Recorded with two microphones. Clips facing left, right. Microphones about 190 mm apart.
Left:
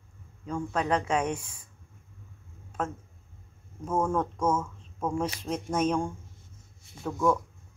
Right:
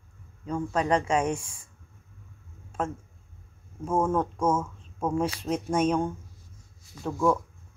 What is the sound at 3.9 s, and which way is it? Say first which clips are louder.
Speech: right 2 dB; 10° right (ahead or behind).